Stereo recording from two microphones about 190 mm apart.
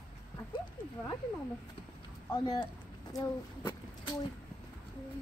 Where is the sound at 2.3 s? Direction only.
20° left (ahead or behind).